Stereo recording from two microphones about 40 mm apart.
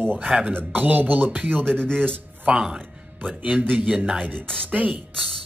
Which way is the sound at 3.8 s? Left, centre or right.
Right.